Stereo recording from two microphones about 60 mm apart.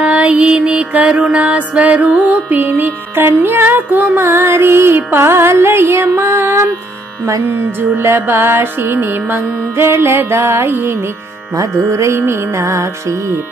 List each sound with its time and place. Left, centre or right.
0.0 s music: right
2.8 s music: right
8.0 s music: right
11.5 s music: right